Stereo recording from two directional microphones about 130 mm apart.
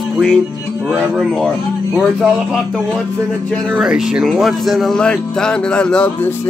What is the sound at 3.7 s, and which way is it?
Speech, 5° right (ahead or behind).